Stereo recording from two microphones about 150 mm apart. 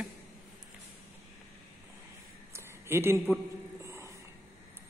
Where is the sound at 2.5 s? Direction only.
15° right (ahead or behind).